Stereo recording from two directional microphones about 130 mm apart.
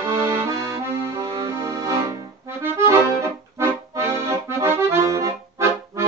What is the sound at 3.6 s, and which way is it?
Accordion, 20° right (ahead or behind).